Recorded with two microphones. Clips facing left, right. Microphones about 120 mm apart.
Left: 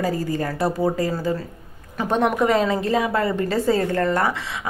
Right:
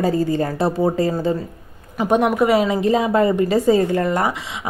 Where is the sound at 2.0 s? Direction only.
10° right (ahead or behind).